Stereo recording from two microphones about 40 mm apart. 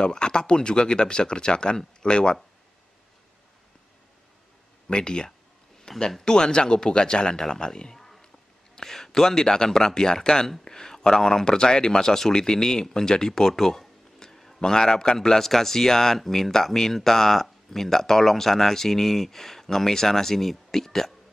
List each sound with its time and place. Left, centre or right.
0.0 s speech: left
4.8 s a man's voice: left
12.9 s a sound: centre
14.6 s a man's voice: centre